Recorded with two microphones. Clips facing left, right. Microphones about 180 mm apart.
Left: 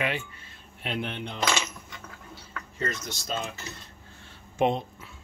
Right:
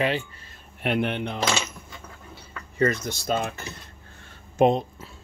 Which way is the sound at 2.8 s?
55° right (ahead or behind).